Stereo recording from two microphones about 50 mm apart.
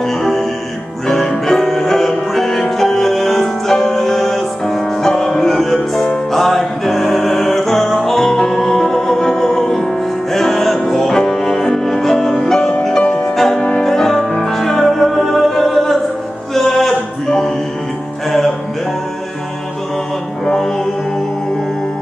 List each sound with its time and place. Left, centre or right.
0.0 s music: centre
13.8 s music: centre
20.4 s music: centre